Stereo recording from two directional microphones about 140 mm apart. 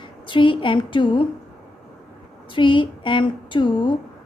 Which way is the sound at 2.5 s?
35° left (ahead or behind).